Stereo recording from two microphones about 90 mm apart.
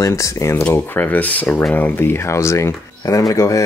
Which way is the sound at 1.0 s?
20° left (ahead or behind).